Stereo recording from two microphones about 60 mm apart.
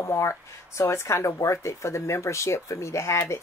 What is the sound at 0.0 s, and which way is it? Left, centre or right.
Speech, left.